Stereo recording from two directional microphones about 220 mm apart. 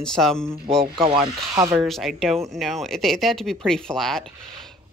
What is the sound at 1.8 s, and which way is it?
Speech, centre (ahead or behind).